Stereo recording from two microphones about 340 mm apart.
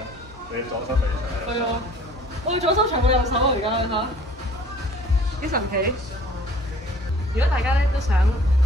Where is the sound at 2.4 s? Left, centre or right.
Centre.